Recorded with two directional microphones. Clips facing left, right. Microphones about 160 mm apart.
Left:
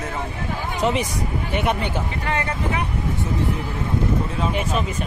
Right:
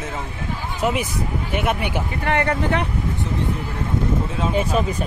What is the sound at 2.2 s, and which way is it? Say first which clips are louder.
Speech: right 6 dB; 60° right (ahead or behind).